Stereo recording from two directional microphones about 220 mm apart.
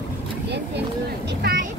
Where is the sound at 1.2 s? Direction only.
45° right (ahead or behind).